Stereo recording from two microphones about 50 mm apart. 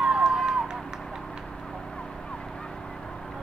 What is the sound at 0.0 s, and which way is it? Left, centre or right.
Run, centre.